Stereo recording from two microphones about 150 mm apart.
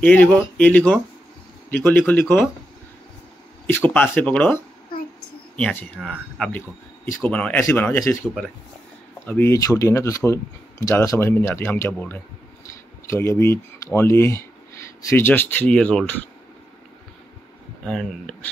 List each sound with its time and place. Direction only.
0.0 s speech: 10° left (ahead or behind)
3.6 s speech: 10° left (ahead or behind)
5.6 s speech: 5° left (ahead or behind)
9.2 s speech: 15° left (ahead or behind)
17.8 s speech: 5° left (ahead or behind)